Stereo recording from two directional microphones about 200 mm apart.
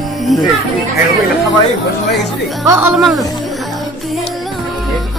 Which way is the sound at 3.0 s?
Centre (ahead or behind).